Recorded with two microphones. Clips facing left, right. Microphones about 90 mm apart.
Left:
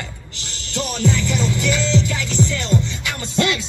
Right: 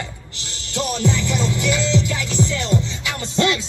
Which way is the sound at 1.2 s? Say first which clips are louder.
Even; 35° right (ahead or behind).